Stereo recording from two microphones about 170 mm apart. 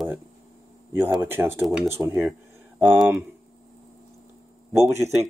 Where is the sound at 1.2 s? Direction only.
15° right (ahead or behind).